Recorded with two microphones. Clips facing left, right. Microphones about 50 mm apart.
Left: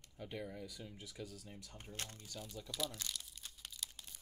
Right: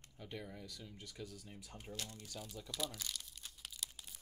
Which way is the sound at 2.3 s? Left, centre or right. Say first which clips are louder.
Even; centre.